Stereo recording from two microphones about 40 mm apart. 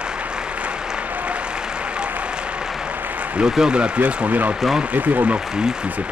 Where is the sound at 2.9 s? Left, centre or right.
Right.